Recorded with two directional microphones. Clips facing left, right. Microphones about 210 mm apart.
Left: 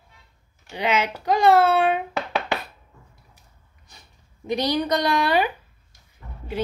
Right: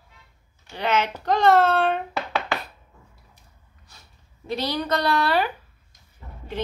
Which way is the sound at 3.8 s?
15° left (ahead or behind).